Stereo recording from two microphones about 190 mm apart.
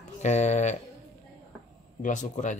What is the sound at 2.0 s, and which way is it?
Speech, 40° left (ahead or behind).